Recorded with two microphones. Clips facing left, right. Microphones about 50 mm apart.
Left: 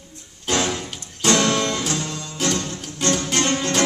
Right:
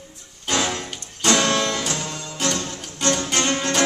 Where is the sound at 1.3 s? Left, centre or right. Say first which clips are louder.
Left 1 dB; right.